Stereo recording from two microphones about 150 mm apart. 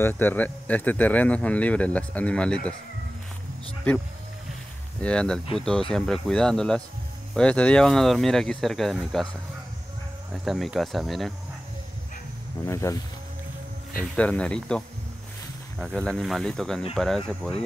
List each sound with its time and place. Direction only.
0.0 s speech: 15° left (ahead or behind)
5.0 s speech: 5° left (ahead or behind)
12.6 s speech: 20° left (ahead or behind)
14.1 s speech: 10° left (ahead or behind)
15.8 s speech: 5° left (ahead or behind)